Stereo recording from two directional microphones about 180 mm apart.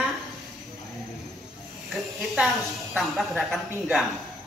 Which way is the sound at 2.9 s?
Centre (ahead or behind).